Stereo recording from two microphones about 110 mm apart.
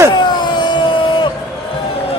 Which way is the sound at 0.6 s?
45° left (ahead or behind).